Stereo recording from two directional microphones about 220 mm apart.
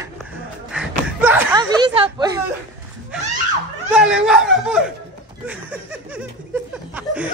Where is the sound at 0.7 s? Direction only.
5° right (ahead or behind).